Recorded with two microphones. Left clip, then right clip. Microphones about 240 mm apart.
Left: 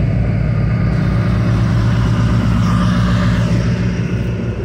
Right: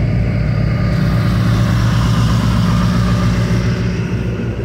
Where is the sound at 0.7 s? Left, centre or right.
Right.